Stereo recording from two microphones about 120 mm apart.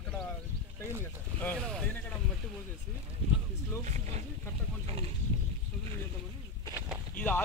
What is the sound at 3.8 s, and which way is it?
Speech, 70° right (ahead or behind).